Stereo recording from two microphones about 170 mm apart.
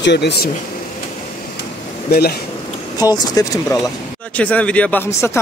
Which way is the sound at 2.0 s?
65° left (ahead or behind).